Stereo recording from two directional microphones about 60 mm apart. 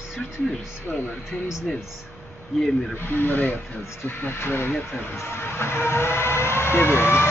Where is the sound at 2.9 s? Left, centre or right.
Left.